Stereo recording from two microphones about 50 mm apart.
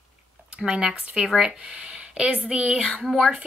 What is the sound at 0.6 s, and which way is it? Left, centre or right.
A woman's voice, centre.